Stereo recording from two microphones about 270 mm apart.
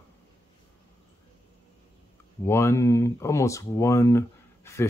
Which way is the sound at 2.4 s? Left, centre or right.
Centre.